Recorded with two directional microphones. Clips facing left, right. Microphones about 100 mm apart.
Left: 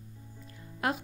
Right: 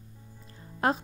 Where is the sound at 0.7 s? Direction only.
35° right (ahead or behind).